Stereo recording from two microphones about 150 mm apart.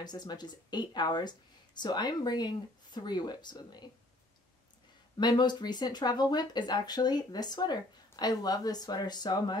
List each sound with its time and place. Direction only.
0.0 s speech: 25° left (ahead or behind)
5.1 s speech: 30° left (ahead or behind)